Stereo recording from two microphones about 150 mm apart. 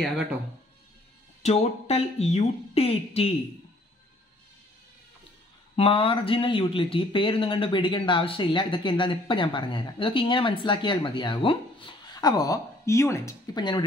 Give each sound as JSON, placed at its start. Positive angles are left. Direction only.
{"t": 1.4, "sound": "speech", "side_deg": 45}
{"t": 5.8, "sound": "speech", "side_deg": 35}
{"t": 13.6, "sound": "speech", "side_deg": 30}